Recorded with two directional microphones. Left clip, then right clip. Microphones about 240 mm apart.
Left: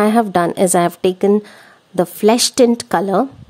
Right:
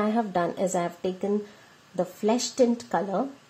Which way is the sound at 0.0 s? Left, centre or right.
Left.